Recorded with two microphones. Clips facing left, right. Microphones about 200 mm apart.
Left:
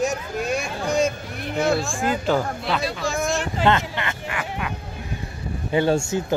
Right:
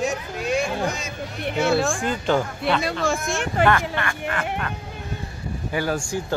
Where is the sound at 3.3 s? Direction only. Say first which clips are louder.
Right 2 dB; 60° right (ahead or behind).